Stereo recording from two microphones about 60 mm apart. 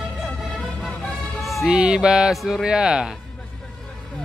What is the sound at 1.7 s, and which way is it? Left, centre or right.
Speech, centre.